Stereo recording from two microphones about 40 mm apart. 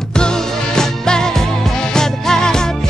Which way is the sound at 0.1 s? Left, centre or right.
Centre.